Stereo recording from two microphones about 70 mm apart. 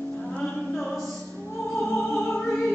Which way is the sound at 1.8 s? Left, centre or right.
Centre.